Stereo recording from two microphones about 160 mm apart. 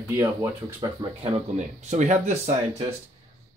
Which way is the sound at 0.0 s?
15° right (ahead or behind).